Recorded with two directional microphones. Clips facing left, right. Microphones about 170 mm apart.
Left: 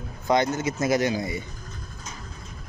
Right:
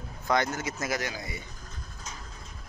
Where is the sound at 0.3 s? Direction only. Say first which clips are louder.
Left 5 dB; 20° left (ahead or behind).